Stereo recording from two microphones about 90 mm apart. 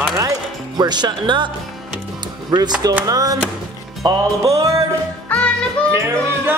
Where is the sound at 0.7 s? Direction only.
50° right (ahead or behind).